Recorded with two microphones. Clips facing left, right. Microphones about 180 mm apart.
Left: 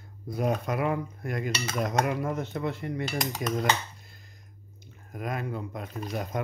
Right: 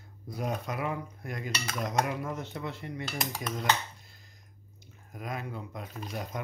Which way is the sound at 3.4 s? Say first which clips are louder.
Left 9 dB; 60° left (ahead or behind).